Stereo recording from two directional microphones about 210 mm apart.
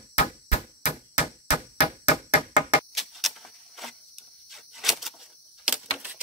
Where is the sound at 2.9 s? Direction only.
Centre (ahead or behind).